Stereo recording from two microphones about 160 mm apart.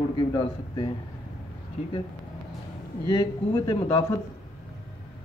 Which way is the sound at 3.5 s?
30° left (ahead or behind).